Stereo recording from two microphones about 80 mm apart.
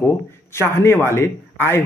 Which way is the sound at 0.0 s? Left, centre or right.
Left.